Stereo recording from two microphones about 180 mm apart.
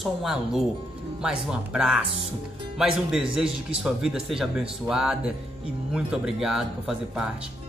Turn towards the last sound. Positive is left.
turn(degrees=-5)  # may be behind; listen again after turning